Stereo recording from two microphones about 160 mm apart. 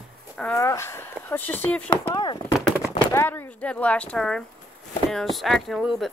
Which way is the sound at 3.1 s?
15° left (ahead or behind).